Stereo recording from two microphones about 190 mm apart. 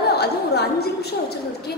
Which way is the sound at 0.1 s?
60° left (ahead or behind).